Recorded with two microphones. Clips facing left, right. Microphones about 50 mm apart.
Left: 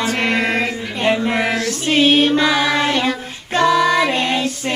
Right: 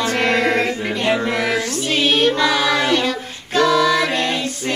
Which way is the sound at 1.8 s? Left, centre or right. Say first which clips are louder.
Left 4 dB; centre.